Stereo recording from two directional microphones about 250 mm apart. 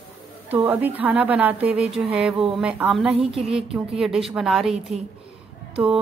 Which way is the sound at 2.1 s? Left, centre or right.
Centre.